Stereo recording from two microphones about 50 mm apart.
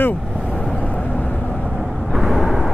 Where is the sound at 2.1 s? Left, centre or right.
Centre.